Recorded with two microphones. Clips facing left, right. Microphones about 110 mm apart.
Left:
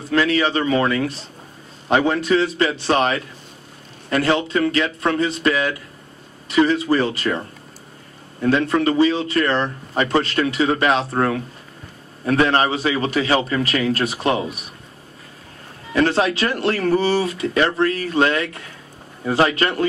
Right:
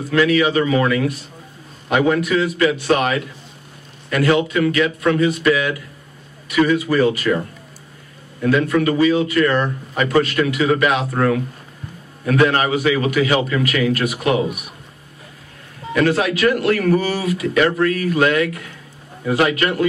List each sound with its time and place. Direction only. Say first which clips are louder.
0.1 s a man's voice: right 2 dB; 30° left (ahead or behind)
15.9 s a man's voice: right 1 dB; 30° left (ahead or behind)